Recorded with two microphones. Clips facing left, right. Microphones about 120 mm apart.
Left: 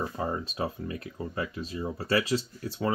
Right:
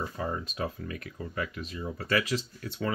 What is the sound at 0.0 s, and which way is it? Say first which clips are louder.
Speech: left 2 dB; 25° left (ahead or behind).